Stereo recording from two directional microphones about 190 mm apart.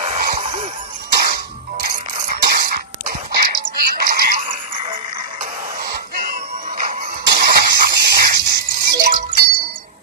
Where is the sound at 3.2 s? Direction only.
55° right (ahead or behind).